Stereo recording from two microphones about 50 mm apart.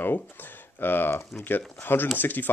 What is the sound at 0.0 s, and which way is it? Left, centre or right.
Speech, left.